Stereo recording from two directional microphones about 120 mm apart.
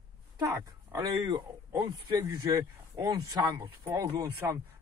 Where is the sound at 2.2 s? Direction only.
25° right (ahead or behind).